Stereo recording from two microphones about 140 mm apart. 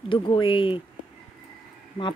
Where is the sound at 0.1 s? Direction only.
35° left (ahead or behind).